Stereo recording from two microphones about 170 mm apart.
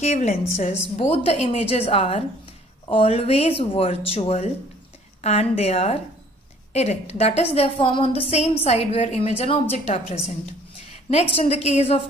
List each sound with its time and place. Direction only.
0.0 s a woman's voice: 40° left (ahead or behind)